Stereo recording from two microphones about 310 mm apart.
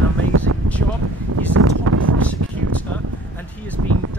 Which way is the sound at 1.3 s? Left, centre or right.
Right.